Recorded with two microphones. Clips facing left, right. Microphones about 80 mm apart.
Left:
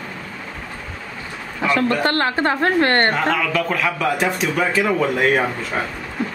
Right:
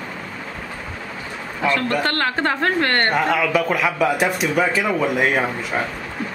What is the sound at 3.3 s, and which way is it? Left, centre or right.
Speech, centre.